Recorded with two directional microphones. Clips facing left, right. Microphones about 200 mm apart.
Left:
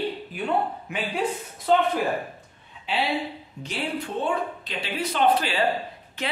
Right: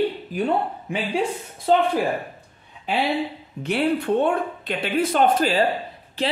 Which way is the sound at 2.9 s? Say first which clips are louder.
Right 3 dB; 45° right (ahead or behind).